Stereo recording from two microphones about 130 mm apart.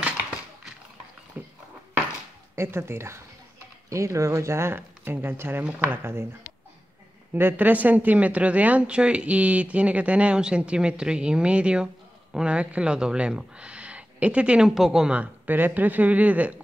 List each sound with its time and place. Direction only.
1.4 s a sound: 15° right (ahead or behind)
2.5 s speech: 20° right (ahead or behind)
7.3 s speech: 15° right (ahead or behind)